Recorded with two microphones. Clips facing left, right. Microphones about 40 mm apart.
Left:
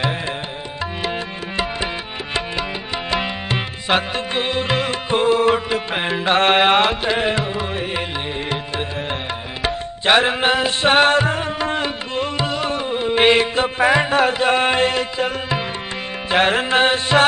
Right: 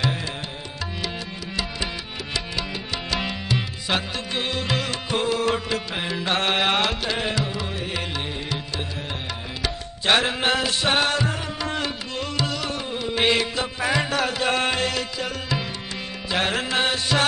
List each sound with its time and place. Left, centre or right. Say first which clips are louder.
3.1 s music: left 5 dB; left
3.4 s music: left 5 dB; left
9.6 s tabla: left 8 dB; left
10.1 s music: left 5 dB; left
10.8 s music: left 7 dB; left
16.3 s carnatic music: left 7 dB; left